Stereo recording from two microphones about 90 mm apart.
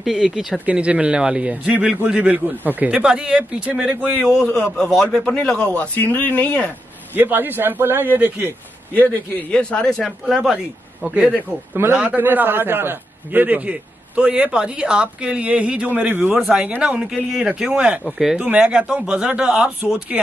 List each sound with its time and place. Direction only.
0.0 s a man's voice: 5° right (ahead or behind)
4.5 s a man's voice: 5° left (ahead or behind)
7.2 s speech: 20° right (ahead or behind)
8.9 s speech: 20° left (ahead or behind); by 11.4 s 5° right (ahead or behind)
11.7 s a man's voice: 25° right (ahead or behind)